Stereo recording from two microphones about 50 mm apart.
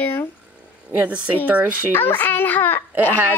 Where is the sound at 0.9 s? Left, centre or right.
Right.